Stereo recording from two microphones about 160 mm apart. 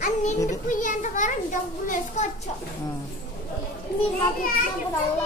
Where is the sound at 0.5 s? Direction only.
55° left (ahead or behind).